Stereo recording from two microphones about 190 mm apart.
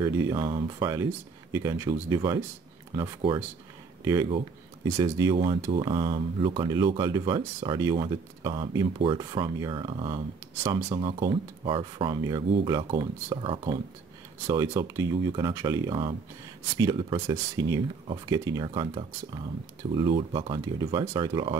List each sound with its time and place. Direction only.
0.0 s speech: 20° right (ahead or behind)
10.6 s speech: 15° right (ahead or behind)
10.9 s speech: 25° right (ahead or behind)